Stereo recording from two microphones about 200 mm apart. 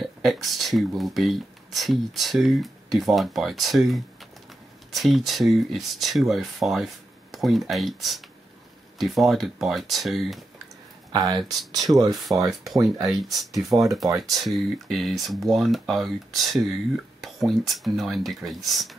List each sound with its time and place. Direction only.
0.0 s speech: centre (ahead or behind)
11.1 s speech: 20° right (ahead or behind)
13.0 s speech: centre (ahead or behind)